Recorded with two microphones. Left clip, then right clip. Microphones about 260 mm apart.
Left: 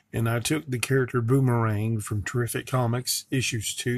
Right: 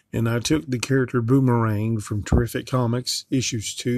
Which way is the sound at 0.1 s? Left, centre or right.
Right.